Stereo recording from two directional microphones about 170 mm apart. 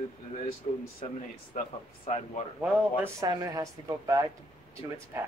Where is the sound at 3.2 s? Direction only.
20° right (ahead or behind).